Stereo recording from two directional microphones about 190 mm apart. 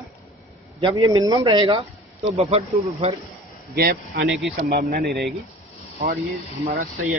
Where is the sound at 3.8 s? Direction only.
60° right (ahead or behind).